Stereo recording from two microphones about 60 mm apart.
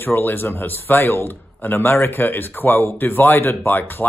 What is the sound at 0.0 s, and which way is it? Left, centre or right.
Speech, left.